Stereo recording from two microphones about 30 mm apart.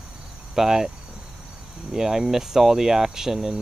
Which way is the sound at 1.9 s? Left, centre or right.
Centre.